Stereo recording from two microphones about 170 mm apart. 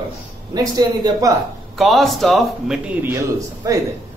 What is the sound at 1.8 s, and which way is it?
A man's voice, centre (ahead or behind).